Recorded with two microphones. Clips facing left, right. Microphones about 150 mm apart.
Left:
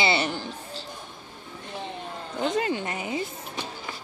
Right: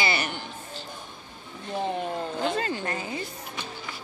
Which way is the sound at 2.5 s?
15° left (ahead or behind).